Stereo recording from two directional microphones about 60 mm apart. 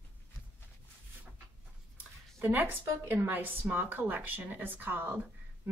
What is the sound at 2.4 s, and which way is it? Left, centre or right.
A woman's voice, right.